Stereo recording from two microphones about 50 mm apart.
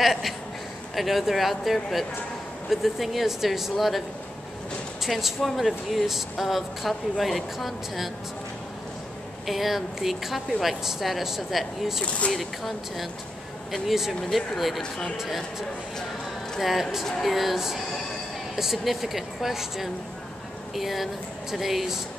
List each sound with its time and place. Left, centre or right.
0.0 s speech: centre
5.0 s speech: centre
9.5 s speech: centre
16.5 s speech: centre